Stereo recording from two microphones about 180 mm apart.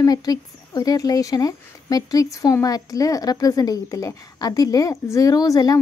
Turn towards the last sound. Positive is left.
turn(degrees=20)  # may be behind; listen again after turning